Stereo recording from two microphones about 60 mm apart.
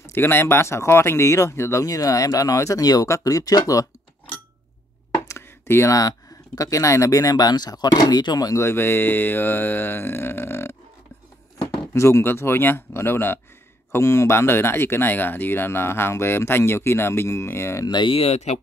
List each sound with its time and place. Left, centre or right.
0.0 s speech: left
1.9 s speech: left
5.3 s a sound: left
5.9 s speech: left
8.6 s speech: left
11.9 s speech: left
13.9 s speech: left